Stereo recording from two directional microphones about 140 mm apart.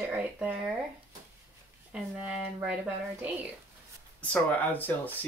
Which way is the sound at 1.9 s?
10° right (ahead or behind).